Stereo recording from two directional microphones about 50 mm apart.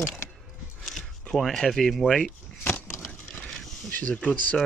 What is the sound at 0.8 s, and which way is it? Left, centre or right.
Speech, centre.